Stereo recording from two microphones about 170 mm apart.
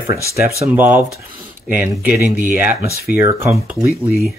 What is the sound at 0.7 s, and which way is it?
Speech, 10° right (ahead or behind).